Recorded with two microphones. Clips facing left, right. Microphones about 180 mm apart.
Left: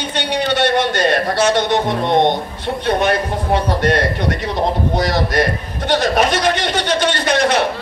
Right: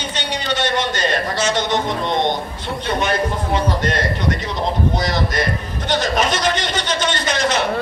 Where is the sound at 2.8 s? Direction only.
60° left (ahead or behind).